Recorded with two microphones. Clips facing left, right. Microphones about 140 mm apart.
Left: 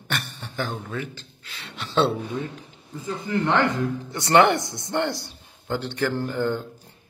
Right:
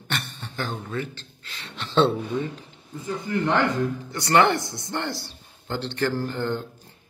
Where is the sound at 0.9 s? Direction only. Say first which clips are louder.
Right 1 dB; 10° left (ahead or behind).